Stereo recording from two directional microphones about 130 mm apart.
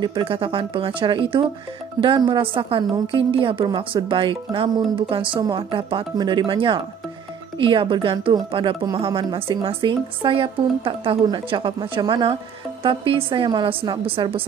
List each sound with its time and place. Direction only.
0.0 s a woman's voice: 40° right (ahead or behind)